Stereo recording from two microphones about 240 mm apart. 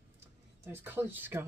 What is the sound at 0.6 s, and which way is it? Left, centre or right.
Speech, centre.